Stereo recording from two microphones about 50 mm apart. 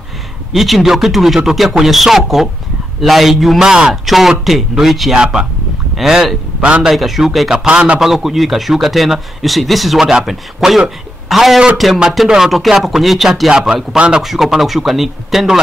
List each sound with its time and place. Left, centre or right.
0.5 s speech: centre
5.1 s speech: centre
7.6 s a man's voice: right
8.0 s a man's voice: centre
13.5 s a man's voice: centre
14.2 s speech: centre